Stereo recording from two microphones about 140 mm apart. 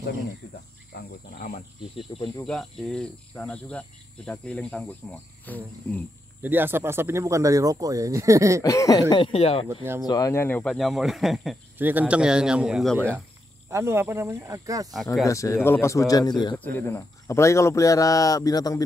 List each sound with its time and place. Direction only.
2.1 s speech: 35° left (ahead or behind)
2.4 s speech: 5° left (ahead or behind)
6.4 s speech: 15° right (ahead or behind)
8.6 s speech: 25° left (ahead or behind)
9.1 s speech: 40° left (ahead or behind)
10.0 s speech: 25° left (ahead or behind); by 11.5 s centre (ahead or behind)
11.8 s a man's voice: 10° right (ahead or behind)
13.7 s speech: 20° right (ahead or behind)
15.2 s speech: 20° left (ahead or behind)
16.5 s speech: 10° left (ahead or behind)